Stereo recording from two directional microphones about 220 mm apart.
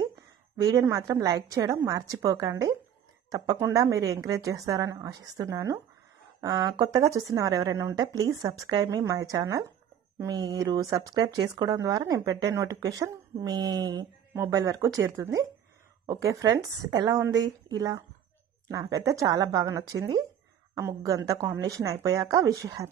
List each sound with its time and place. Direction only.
0.6 s speech: 15° right (ahead or behind)